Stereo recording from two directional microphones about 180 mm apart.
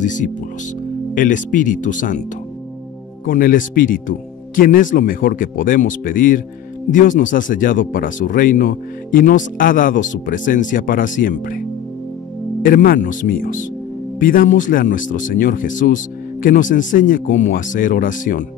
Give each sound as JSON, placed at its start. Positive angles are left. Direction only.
{"t": 0.0, "sound": "speech", "side_deg": 45}
{"t": 3.3, "sound": "speech", "side_deg": 50}
{"t": 12.6, "sound": "speech", "side_deg": 50}